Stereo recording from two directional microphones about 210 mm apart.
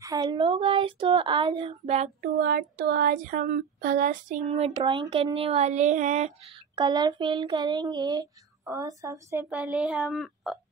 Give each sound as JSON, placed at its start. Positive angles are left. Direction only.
{"t": 0.0, "sound": "speech", "side_deg": -15}
{"t": 2.2, "sound": "speech", "side_deg": -50}